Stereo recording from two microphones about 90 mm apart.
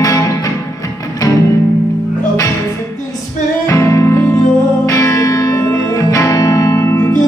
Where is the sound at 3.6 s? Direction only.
35° left (ahead or behind).